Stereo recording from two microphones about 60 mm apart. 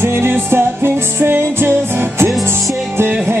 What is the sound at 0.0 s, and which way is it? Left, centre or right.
Music, right.